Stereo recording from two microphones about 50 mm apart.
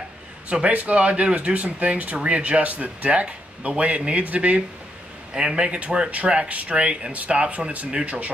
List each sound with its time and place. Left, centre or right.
0.5 s speech: right
5.3 s speech: centre